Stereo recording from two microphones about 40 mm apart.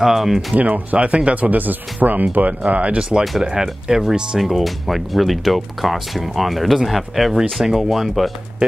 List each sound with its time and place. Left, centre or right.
0.0 s speech: centre
0.6 s speech: right
1.0 s speech: right
2.7 s speech: right
3.0 s speech: right
4.4 s speech: centre